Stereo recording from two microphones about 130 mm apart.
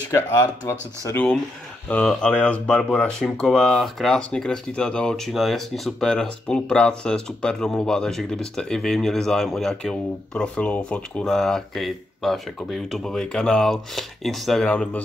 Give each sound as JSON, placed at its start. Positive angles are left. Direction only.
{"t": 0.1, "sound": "speech", "side_deg": 25}
{"t": 1.9, "sound": "speech", "side_deg": 10}